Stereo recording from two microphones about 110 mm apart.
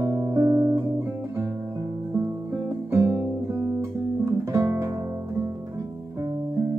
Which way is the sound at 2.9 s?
25° right (ahead or behind).